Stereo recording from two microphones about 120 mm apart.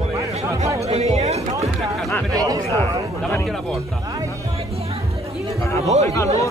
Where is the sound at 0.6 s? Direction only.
65° right (ahead or behind).